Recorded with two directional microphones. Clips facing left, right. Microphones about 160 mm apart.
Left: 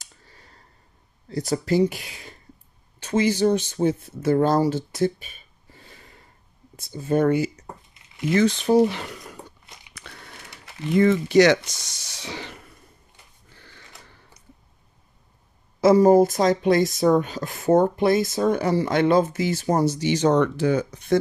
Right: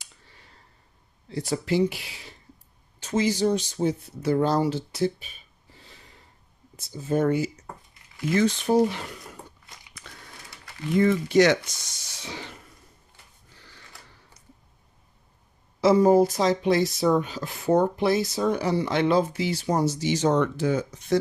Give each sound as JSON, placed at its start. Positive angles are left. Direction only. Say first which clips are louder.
{"t": 0.0, "sound": "a sound", "louder": "left 2 dB", "side_deg": 40}
{"t": 1.3, "sound": "speech", "louder": "left 3 dB", "side_deg": 40}
{"t": 3.0, "sound": "speech", "louder": "left 3 dB", "side_deg": 60}
{"t": 5.8, "sound": "a sound", "louder": "left 3 dB", "side_deg": 55}
{"t": 6.8, "sound": "speech", "louder": "left 3 dB", "side_deg": 65}
{"t": 8.3, "sound": "speech", "louder": "left 3 dB", "side_deg": 75}
{"t": 9.9, "sound": "a sound", "louder": "left 4 dB", "side_deg": 70}
{"t": 11.0, "sound": "speech", "louder": "left 3 dB", "side_deg": 90}
{"t": 15.8, "sound": "speech", "louder": "left 3 dB", "side_deg": 45}